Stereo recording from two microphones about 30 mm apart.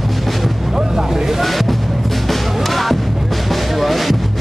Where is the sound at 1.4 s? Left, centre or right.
Centre.